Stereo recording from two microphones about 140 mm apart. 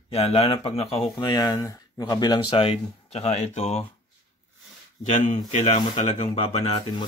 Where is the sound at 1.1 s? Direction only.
30° left (ahead or behind); by 3.8 s 50° left (ahead or behind).